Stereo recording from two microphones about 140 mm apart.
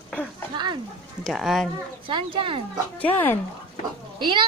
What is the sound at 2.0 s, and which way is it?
Speech, 35° right (ahead or behind).